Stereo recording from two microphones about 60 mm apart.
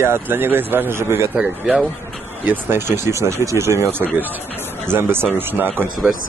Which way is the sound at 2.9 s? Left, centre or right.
Right.